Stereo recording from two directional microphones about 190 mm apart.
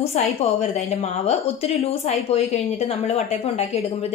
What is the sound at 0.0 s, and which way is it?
A woman's voice, 35° left (ahead or behind).